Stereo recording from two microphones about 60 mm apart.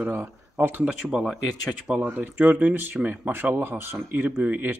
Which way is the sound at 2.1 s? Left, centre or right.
Right.